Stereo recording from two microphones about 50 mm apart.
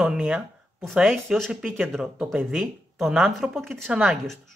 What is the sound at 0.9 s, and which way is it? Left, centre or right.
Speech, centre.